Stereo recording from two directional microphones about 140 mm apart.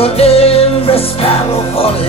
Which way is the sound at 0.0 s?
45° left (ahead or behind).